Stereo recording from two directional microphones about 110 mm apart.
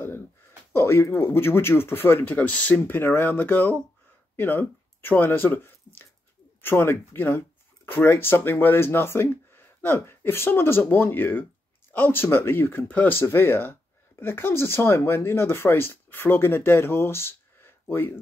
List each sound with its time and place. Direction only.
0.7 s speech: 25° left (ahead or behind)